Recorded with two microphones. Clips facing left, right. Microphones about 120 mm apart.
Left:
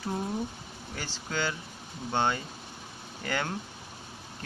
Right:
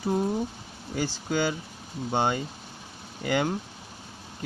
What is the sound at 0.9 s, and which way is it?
Speech, 15° right (ahead or behind).